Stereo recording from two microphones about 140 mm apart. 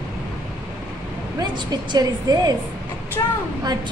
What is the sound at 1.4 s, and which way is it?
A woman's voice, 30° right (ahead or behind).